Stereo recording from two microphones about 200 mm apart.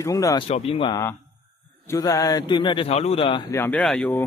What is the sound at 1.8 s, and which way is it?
A man's voice, 15° left (ahead or behind).